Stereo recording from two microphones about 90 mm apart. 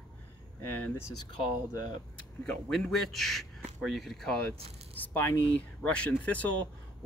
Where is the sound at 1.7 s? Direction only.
45° left (ahead or behind).